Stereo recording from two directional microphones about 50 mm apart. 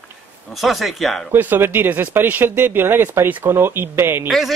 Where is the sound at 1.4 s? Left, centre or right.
Right.